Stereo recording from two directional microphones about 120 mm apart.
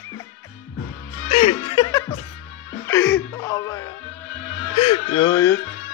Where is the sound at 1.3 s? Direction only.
75° left (ahead or behind).